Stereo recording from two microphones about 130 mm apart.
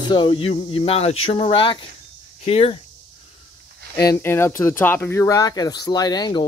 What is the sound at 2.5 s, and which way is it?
Speech, 50° left (ahead or behind).